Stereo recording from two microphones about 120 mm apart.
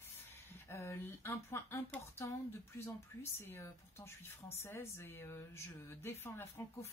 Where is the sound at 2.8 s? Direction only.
20° left (ahead or behind).